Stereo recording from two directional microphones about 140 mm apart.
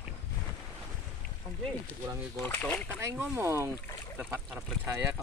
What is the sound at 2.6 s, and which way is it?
Speech, 5° left (ahead or behind).